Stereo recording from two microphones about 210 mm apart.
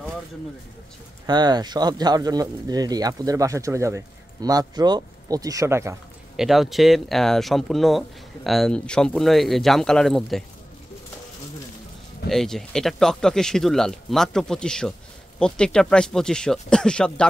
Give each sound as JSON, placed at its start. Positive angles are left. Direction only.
{"t": 1.2, "sound": "speech", "side_deg": -20}
{"t": 6.3, "sound": "speech", "side_deg": 0}
{"t": 12.3, "sound": "speech", "side_deg": 0}